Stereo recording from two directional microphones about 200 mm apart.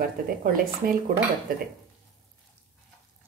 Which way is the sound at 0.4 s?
45° right (ahead or behind).